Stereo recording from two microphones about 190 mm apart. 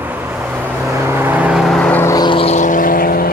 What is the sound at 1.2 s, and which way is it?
Vehicle, 10° right (ahead or behind).